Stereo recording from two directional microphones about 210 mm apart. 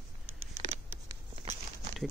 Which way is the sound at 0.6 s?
25° right (ahead or behind).